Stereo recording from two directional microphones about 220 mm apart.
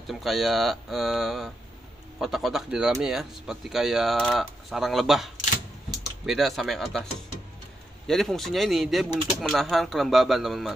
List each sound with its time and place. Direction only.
0.0 s speech: centre (ahead or behind)
8.1 s speech: centre (ahead or behind)